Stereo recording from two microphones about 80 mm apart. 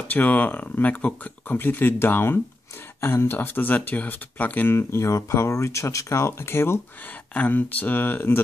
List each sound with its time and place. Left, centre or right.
0.1 s speech: left
4.7 s speech: left
7.3 s speech: centre